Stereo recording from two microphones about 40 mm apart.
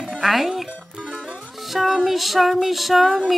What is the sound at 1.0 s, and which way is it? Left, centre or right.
Music, right.